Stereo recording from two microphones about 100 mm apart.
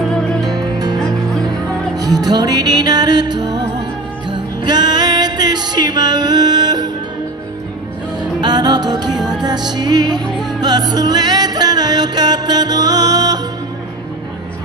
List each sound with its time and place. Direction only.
0.0 s music: 10° left (ahead or behind)
0.6 s music: 45° right (ahead or behind)
0.9 s music: 5° left (ahead or behind)
2.0 s music: 40° right (ahead or behind)
8.2 s music: 45° right (ahead or behind)